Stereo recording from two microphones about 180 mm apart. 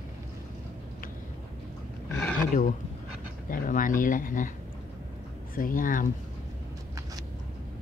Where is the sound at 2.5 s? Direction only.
45° left (ahead or behind).